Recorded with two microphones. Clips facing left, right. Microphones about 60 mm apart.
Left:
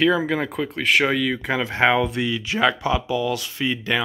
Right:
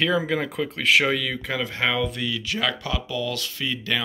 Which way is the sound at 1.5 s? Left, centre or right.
Left.